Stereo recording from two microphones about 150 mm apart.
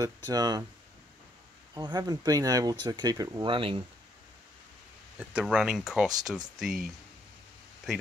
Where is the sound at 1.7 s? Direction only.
30° right (ahead or behind).